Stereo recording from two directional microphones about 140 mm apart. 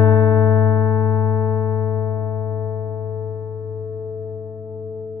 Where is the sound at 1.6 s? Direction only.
20° left (ahead or behind).